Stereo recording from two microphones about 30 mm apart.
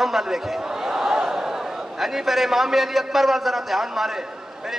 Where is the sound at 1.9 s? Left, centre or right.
Centre.